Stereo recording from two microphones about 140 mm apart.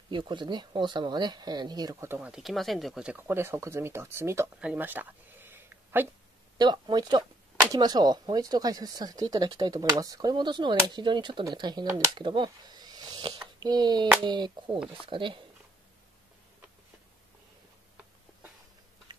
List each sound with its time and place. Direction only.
0.1 s speech: 35° right (ahead or behind)
2.0 s speech: 10° right (ahead or behind)
4.6 s a sound: 10° right (ahead or behind)
6.6 s speech: 30° right (ahead or behind)